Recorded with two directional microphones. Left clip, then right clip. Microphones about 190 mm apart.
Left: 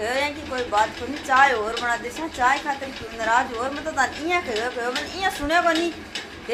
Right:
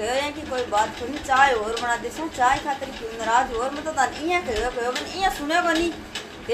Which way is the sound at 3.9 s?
10° left (ahead or behind).